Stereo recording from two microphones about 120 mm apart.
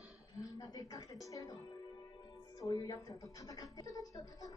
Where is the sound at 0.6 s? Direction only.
30° left (ahead or behind).